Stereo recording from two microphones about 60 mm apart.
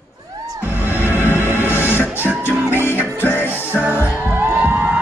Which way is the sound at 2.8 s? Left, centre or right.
Left.